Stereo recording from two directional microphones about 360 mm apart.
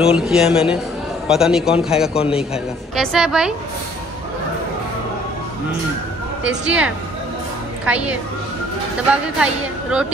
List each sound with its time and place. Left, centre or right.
0.0 s a woman's voice: centre
2.1 s a man's voice: centre
2.5 s a woman's voice: centre
6.6 s a woman's voice: centre